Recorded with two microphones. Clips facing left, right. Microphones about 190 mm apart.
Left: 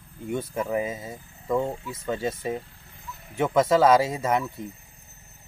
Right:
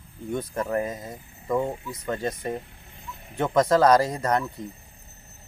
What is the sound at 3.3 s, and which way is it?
Speech, 5° left (ahead or behind).